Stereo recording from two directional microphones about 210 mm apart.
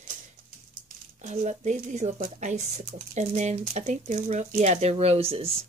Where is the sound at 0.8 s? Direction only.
35° right (ahead or behind).